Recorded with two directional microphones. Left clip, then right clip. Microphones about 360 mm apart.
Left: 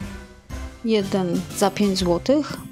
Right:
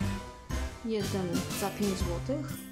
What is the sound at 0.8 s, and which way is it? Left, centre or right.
Speech, centre.